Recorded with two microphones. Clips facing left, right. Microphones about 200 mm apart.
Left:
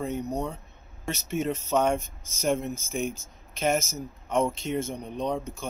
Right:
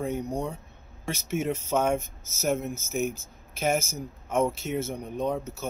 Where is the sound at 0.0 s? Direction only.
10° right (ahead or behind).